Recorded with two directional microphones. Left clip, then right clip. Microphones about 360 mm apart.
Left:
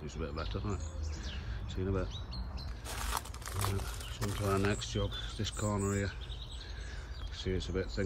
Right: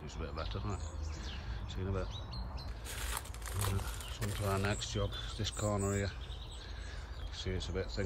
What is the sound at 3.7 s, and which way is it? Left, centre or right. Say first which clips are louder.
Speech: left 1 dB; centre.